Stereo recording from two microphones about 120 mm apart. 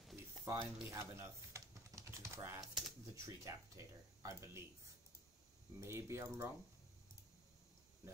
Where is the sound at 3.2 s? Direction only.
25° right (ahead or behind).